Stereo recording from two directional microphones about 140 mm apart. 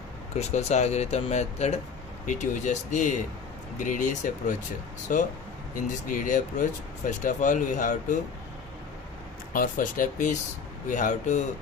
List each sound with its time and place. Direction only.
0.4 s speech: 50° left (ahead or behind)
2.2 s speech: 60° left (ahead or behind)
5.1 s speech: 75° left (ahead or behind)
9.5 s speech: 85° left; by 11.4 s 65° left (ahead or behind)